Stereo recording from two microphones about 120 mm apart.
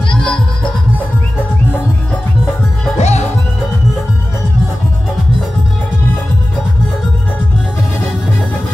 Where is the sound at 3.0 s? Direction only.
65° left (ahead or behind).